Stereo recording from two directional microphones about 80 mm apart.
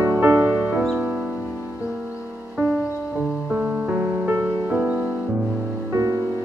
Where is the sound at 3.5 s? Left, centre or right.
Centre.